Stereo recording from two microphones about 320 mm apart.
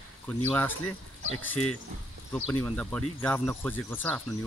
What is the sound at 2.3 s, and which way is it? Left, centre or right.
Speech, centre.